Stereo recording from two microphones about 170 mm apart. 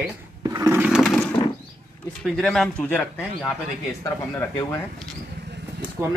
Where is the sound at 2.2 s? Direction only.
Centre (ahead or behind).